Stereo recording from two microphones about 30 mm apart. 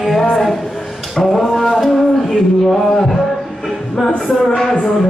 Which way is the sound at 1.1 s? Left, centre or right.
Centre.